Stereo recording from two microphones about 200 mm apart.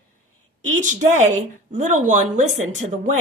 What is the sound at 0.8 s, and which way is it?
A woman's voice, 35° right (ahead or behind).